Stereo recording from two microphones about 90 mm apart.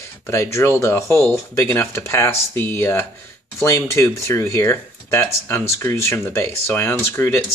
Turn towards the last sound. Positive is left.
turn(degrees=30)  # may be behind; listen again after turning